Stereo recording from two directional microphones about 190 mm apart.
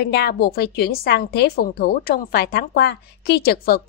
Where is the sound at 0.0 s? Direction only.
60° left (ahead or behind).